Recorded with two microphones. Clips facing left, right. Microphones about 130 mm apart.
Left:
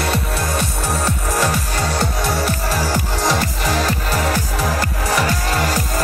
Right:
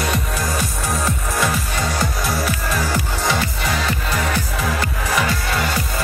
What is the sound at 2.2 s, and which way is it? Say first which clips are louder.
Music: left 2 dB; 30° left (ahead or behind).